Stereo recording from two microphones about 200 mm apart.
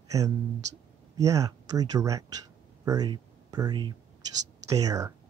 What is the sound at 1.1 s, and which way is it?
Speech, 15° right (ahead or behind).